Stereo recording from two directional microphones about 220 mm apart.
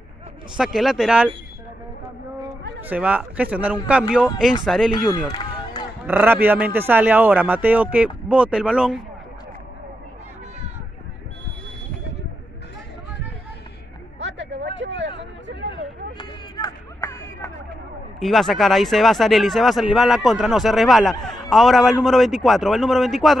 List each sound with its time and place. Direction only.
0.6 s speech: centre (ahead or behind)
2.8 s speech: 5° right (ahead or behind)
5.3 s run: 20° left (ahead or behind)
6.0 s speech: 10° right (ahead or behind)
14.2 s a sound: 55° right (ahead or behind)
16.2 s a sound: 15° left (ahead or behind)
18.2 s speech: centre (ahead or behind)